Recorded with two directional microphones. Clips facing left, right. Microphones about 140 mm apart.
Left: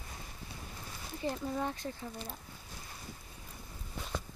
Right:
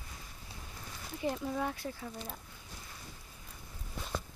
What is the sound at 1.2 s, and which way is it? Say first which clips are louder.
Speech: right 1 dB; 10° right (ahead or behind).